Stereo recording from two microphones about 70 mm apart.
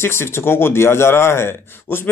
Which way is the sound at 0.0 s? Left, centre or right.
Left.